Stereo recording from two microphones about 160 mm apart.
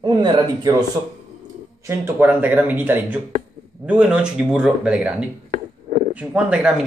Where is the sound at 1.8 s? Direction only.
15° right (ahead or behind).